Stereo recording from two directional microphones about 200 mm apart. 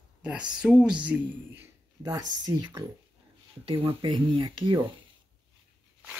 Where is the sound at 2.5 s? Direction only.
20° right (ahead or behind).